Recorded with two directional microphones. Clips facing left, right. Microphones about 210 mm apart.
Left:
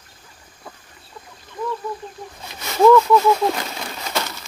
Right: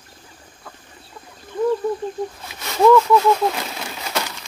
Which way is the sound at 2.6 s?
Centre (ahead or behind).